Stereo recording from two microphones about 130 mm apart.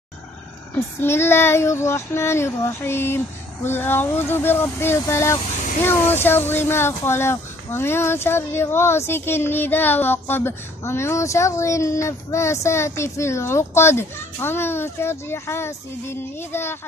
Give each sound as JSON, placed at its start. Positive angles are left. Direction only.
{"t": 0.7, "sound": "speech", "side_deg": 20}